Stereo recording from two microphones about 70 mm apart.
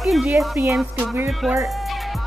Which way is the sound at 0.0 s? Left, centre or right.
Centre.